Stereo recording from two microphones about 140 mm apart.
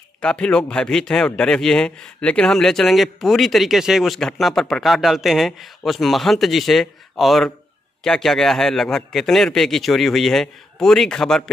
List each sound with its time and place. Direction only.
0.2 s a man's voice: 5° left (ahead or behind)